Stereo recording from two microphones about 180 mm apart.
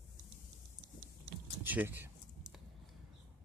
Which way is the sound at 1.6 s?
10° right (ahead or behind).